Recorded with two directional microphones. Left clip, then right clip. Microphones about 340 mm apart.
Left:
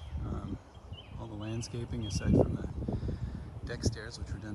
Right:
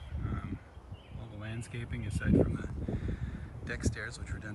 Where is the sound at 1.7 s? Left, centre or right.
Centre.